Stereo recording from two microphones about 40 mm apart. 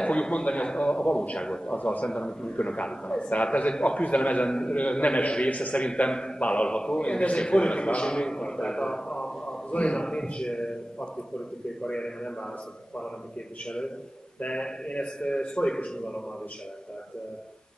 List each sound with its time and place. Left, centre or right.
0.0 s a man's voice: left
1.8 s a man's voice: left
2.0 s a man's voice: left
4.0 s a man's voice: left
4.5 s a man's voice: centre
4.7 s a man's voice: left
5.9 s a man's voice: left
13.7 s a man's voice: centre